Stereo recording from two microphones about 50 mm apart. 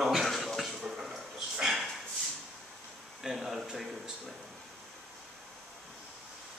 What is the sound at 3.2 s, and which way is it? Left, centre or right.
Speech, centre.